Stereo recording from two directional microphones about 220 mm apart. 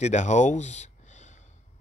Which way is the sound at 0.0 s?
30° left (ahead or behind).